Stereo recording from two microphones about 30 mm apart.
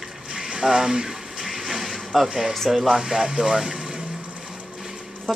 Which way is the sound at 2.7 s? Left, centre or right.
Centre.